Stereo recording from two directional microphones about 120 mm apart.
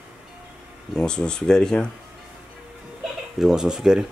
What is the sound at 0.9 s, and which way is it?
Speech, 5° left (ahead or behind).